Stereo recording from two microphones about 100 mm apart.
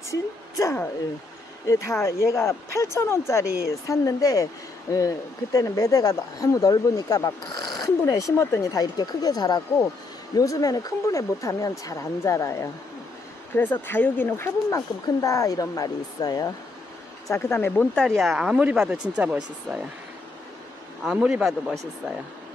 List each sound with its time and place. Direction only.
0.1 s a woman's voice: 30° left (ahead or behind)
13.6 s speech: 20° left (ahead or behind); by 16.5 s 40° left (ahead or behind)
17.3 s speech: 25° left (ahead or behind)
17.9 s speech: 5° left (ahead or behind); by 19.8 s 10° right (ahead or behind)
21.2 s speech: 10° right (ahead or behind)